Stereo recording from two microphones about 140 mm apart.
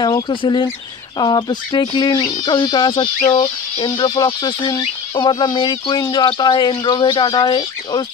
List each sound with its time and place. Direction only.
0.0 s speech: 35° left (ahead or behind)